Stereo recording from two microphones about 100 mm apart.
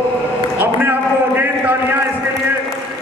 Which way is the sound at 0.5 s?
20° right (ahead or behind).